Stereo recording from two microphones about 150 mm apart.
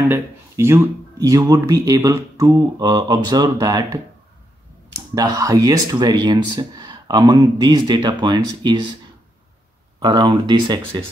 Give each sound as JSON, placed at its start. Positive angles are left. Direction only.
{"t": 0.1, "sound": "speech", "side_deg": -15}
{"t": 9.9, "sound": "speech", "side_deg": -25}